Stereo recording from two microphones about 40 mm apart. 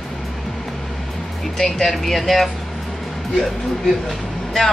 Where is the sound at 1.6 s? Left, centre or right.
Centre.